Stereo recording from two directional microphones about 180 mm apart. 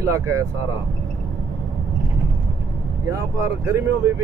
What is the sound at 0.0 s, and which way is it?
Speech, 15° right (ahead or behind).